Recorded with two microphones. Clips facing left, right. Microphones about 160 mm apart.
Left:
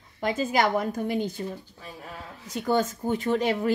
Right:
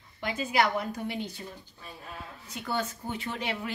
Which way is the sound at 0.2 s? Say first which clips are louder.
Left 3 dB; 45° left (ahead or behind).